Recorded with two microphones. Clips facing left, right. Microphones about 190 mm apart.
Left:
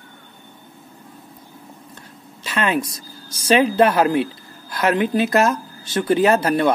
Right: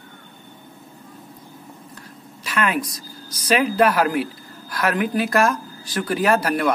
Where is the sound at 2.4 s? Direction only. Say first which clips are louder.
Left 2 dB; 25° left (ahead or behind).